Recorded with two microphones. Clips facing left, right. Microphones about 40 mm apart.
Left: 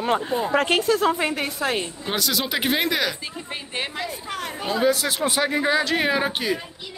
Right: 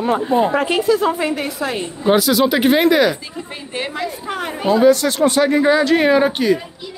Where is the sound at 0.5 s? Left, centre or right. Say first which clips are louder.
Right 2 dB; left.